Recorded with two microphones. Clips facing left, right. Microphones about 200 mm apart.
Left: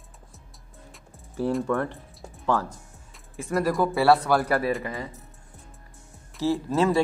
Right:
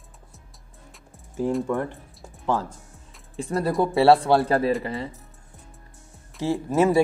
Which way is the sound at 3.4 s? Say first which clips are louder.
Right 1 dB; 30° right (ahead or behind).